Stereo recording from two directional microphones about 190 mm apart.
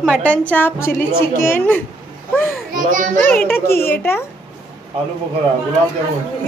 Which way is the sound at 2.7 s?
45° right (ahead or behind).